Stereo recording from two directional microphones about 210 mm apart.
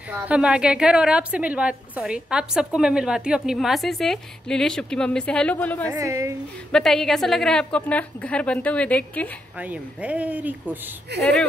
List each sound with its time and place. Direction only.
0.1 s a woman's voice: 5° right (ahead or behind)
5.9 s speech: 15° right (ahead or behind)
6.7 s a woman's voice: centre (ahead or behind)
9.6 s speech: 5° right (ahead or behind)
11.1 s speech: 55° right (ahead or behind)